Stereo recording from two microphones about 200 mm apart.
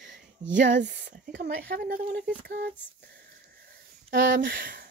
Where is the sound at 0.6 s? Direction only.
60° right (ahead or behind).